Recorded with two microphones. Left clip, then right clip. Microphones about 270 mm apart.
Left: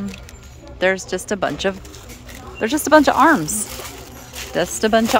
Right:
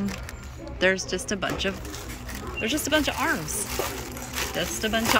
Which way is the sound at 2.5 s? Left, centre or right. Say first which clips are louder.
Left 11 dB; centre.